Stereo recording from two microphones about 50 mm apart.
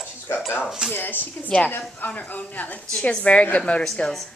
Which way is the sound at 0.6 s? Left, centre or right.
Centre.